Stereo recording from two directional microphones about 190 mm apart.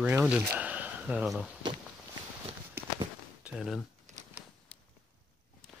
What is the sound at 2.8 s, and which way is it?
Walk, 10° right (ahead or behind).